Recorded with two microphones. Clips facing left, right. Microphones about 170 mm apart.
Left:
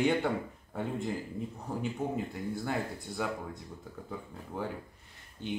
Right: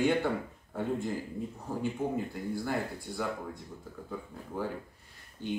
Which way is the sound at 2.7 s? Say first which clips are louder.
Right 1 dB; 20° left (ahead or behind).